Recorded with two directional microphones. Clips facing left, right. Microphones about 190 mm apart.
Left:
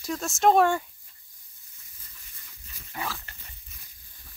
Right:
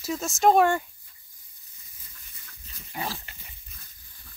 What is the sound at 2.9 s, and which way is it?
Dog, 25° right (ahead or behind).